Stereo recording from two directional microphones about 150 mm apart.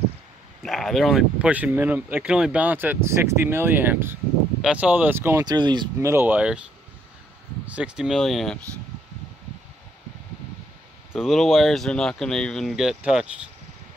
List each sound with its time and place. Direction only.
0.6 s speech: centre (ahead or behind); by 5.4 s 15° right (ahead or behind)
5.4 s speech: 30° right (ahead or behind)
5.9 s speech: 15° right (ahead or behind)
7.6 s speech: 10° right (ahead or behind)
11.1 s speech: centre (ahead or behind)